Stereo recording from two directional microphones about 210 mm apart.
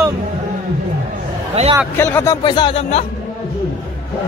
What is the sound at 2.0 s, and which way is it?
Speech, 10° left (ahead or behind).